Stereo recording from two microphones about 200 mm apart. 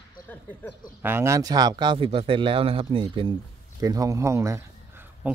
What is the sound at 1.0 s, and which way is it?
Speech, 10° right (ahead or behind).